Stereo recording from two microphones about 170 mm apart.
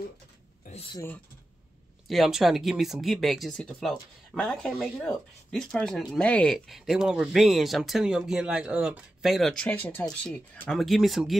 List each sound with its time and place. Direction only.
2.0 s speech: centre (ahead or behind)